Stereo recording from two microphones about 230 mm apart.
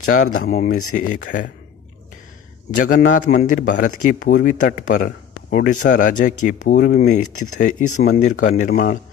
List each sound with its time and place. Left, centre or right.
0.5 s a man's voice: left
2.7 s a man's voice: left